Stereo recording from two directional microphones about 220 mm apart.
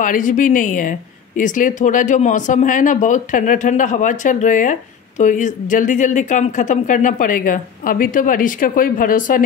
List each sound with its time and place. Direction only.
0.0 s speech: 35° left (ahead or behind)